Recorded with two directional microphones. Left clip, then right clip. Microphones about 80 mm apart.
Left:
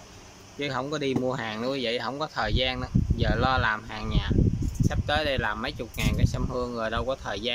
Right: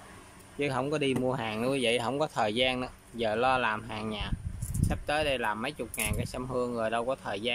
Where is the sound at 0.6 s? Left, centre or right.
Right.